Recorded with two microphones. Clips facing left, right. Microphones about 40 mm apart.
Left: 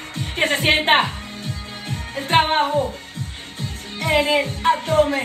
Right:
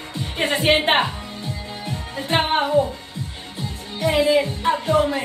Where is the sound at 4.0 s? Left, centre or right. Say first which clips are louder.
Right 1 dB; left.